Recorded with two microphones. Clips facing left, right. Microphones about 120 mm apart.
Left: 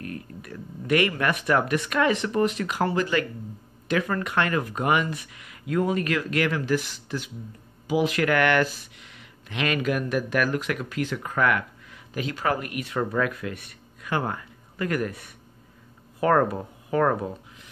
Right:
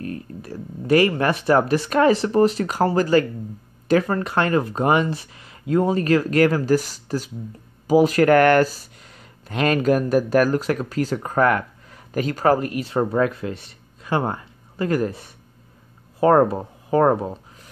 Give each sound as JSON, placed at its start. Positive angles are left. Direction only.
{"t": 0.0, "sound": "speech", "side_deg": -30}